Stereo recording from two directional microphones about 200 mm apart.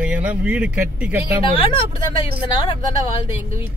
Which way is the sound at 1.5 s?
25° left (ahead or behind).